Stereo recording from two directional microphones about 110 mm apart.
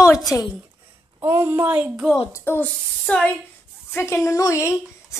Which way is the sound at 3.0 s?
10° left (ahead or behind).